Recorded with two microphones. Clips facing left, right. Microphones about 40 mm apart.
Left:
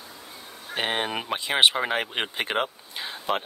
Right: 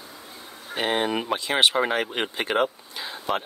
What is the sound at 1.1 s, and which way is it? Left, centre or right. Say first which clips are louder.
Speech: right 4 dB; centre.